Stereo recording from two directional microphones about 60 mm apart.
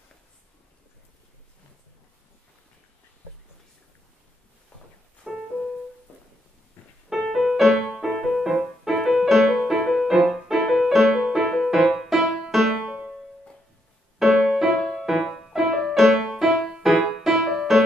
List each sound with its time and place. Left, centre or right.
5.2 s music: centre
7.1 s music: centre
14.1 s music: centre